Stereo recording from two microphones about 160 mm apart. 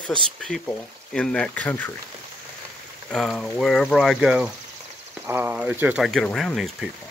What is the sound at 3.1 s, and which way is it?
Speech, centre (ahead or behind).